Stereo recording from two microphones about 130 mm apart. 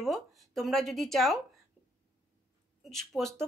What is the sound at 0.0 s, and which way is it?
Speech, centre (ahead or behind).